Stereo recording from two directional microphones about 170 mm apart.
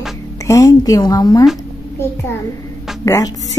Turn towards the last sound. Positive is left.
turn(degrees=20)  # may be behind; listen again after turning